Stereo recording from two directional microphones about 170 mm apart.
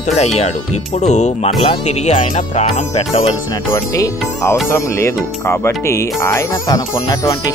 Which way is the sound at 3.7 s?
20° left (ahead or behind).